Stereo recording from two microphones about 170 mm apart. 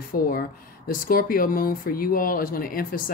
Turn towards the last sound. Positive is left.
turn(degrees=55)  # may be behind; listen again after turning